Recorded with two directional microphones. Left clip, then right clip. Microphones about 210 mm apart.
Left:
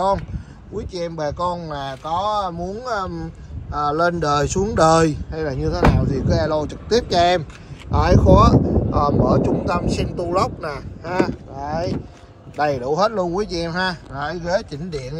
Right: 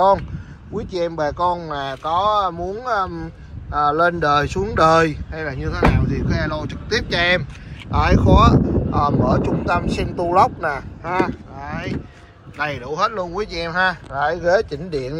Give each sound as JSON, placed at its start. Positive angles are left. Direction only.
{"t": 0.7, "sound": "speech", "side_deg": 0}
{"t": 11.1, "sound": "speech", "side_deg": 15}